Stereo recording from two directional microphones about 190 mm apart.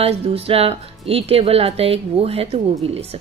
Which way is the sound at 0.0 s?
30° right (ahead or behind).